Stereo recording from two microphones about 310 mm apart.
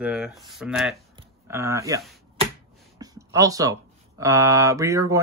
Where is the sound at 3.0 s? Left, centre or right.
Centre.